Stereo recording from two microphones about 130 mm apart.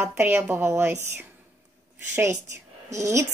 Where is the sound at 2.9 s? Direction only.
20° right (ahead or behind).